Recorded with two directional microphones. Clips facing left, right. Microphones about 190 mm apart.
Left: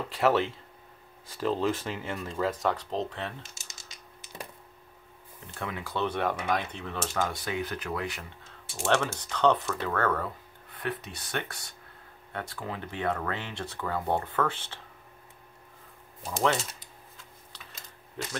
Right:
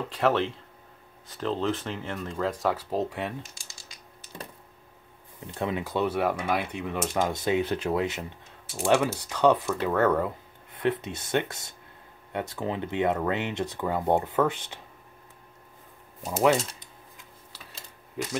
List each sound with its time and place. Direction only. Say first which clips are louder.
0.1 s speech: even; 5° left (ahead or behind)
5.5 s speech: right 6 dB; 20° right (ahead or behind)
6.0 s speech: even; 5° right (ahead or behind); by 8.3 s 25° right (ahead or behind)
8.7 s speech: right 4 dB; 10° right (ahead or behind)
18.2 s speech: right 5 dB; 10° right (ahead or behind)